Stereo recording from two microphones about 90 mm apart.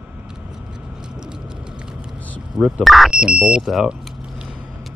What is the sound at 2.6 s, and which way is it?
Speech, 10° right (ahead or behind).